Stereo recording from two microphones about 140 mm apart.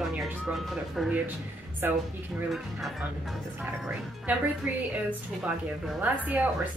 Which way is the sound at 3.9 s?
10° right (ahead or behind).